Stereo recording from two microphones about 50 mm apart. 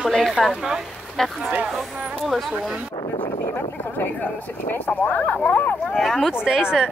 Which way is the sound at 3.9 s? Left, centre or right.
Left.